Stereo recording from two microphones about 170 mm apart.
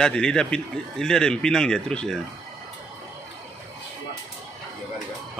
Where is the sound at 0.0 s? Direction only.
5° left (ahead or behind).